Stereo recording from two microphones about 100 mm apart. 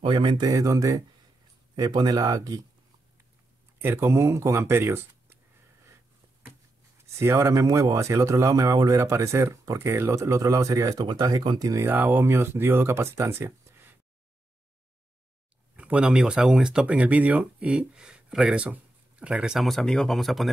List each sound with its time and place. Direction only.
0.0 s speech: 50° right (ahead or behind)
3.8 s speech: 25° right (ahead or behind)
7.2 s speech: 30° right (ahead or behind)
11.8 s speech: 20° right (ahead or behind)
15.7 s speech: 10° right (ahead or behind)